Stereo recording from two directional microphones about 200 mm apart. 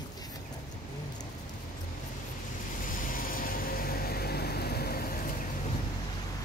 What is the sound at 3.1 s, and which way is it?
Vehicle, 45° left (ahead or behind).